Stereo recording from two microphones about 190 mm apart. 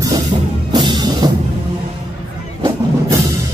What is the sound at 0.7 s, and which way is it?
Music, 25° right (ahead or behind).